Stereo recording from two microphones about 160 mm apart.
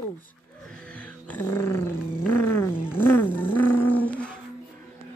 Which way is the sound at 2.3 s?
15° left (ahead or behind).